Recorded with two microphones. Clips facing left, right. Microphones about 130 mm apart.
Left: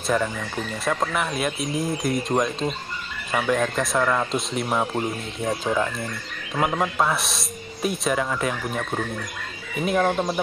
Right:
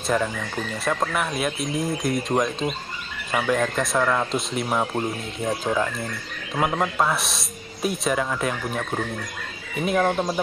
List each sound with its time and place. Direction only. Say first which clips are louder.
0.0 s speech: even; centre (ahead or behind)